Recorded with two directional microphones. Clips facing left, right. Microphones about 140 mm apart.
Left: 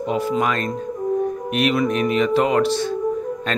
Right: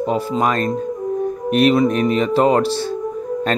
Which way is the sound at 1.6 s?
35° right (ahead or behind).